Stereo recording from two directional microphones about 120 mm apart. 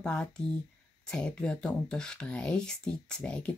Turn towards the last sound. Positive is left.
turn(degrees=10)  # may be behind; listen again after turning